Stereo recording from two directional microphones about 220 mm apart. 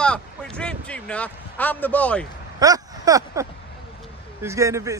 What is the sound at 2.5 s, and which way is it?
Speech, 15° right (ahead or behind).